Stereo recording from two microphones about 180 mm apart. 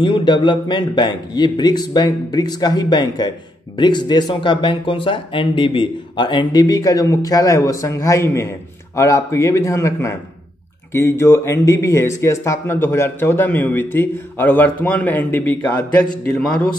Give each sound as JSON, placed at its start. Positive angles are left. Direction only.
{"t": 0.0, "sound": "a man's voice", "side_deg": 25}